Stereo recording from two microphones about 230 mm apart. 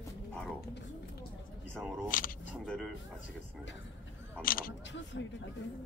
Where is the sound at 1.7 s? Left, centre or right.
Centre.